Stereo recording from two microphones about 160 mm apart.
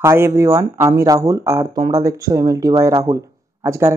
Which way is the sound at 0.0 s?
15° right (ahead or behind).